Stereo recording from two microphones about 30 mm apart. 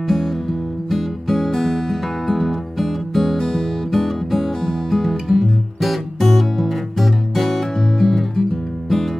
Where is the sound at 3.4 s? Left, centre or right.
Centre.